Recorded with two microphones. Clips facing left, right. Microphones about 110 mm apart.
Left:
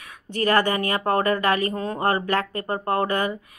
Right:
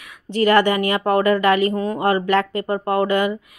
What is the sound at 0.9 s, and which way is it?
Speech, 35° left (ahead or behind).